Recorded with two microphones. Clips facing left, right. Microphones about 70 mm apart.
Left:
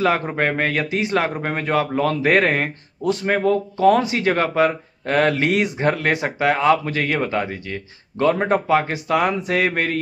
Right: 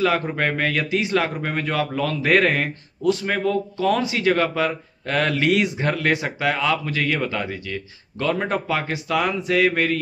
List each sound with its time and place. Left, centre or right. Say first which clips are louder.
0.0 s speech: left 2 dB; left